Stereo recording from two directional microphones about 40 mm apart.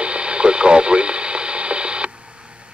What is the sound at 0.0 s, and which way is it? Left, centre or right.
Radio, right.